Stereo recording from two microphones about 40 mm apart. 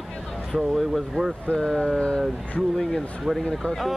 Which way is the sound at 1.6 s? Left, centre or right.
Centre.